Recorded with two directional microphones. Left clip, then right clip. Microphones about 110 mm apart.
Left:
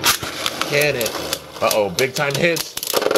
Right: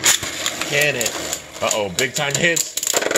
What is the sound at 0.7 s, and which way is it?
Speech, 20° left (ahead or behind).